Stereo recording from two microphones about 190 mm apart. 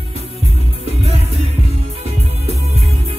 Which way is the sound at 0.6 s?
30° right (ahead or behind).